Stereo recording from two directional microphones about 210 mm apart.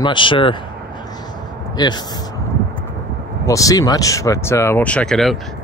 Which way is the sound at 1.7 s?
20° left (ahead or behind).